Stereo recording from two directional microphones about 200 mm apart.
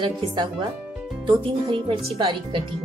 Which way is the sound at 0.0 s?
25° right (ahead or behind).